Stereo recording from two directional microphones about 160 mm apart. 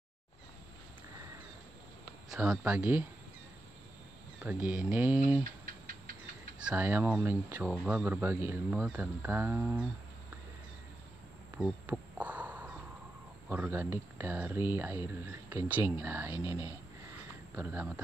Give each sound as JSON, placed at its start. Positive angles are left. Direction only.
{"t": 2.3, "sound": "speech", "side_deg": -5}
{"t": 4.4, "sound": "speech", "side_deg": -10}
{"t": 5.4, "sound": "rodents", "side_deg": -65}
{"t": 6.6, "sound": "speech", "side_deg": -10}
{"t": 11.5, "sound": "crow", "side_deg": -10}
{"t": 13.5, "sound": "speech", "side_deg": -10}